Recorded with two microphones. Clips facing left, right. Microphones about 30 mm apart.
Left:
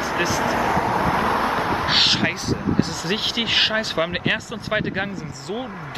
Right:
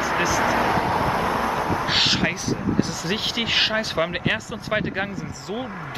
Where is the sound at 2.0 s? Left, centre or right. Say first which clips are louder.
Left 2 dB; centre.